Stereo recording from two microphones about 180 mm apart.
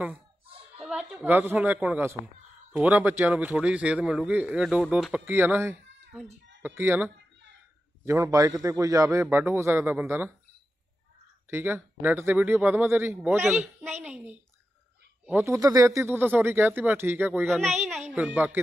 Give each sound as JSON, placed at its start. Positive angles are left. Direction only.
{"t": 0.7, "sound": "a man's voice", "side_deg": -5}
{"t": 11.5, "sound": "a man's voice", "side_deg": -10}